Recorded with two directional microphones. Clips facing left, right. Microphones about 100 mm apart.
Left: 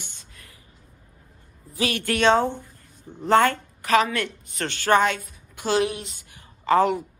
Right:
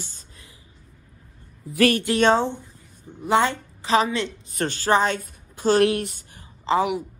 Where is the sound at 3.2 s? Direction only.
15° right (ahead or behind); by 5.1 s 35° right (ahead or behind).